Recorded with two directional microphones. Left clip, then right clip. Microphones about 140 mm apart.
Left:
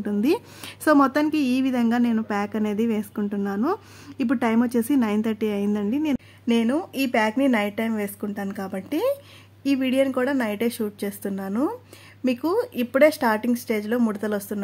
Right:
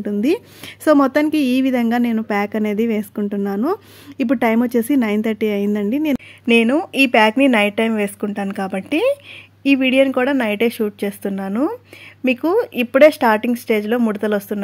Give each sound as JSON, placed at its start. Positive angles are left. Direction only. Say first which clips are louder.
{"t": 0.0, "sound": "a woman's voice", "louder": "right 4 dB", "side_deg": -25}
{"t": 6.4, "sound": "speech", "louder": "right 9 dB", "side_deg": -20}